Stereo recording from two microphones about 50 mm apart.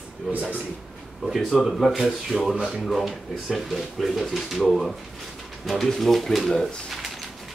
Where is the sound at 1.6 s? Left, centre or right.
Centre.